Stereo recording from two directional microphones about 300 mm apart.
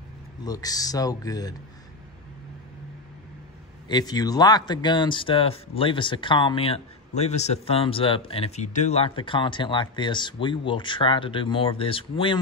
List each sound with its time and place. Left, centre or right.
0.5 s speech: centre
3.9 s speech: centre